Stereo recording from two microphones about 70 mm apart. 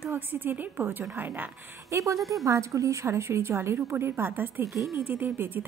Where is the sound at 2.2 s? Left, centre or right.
Centre.